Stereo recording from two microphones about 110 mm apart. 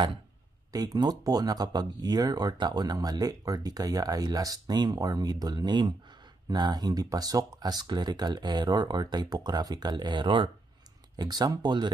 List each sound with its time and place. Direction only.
0.7 s speech: 35° right (ahead or behind)
11.1 s speech: 35° right (ahead or behind)